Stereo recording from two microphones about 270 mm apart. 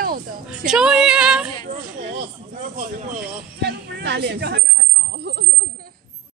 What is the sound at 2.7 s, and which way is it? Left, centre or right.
Speech, right.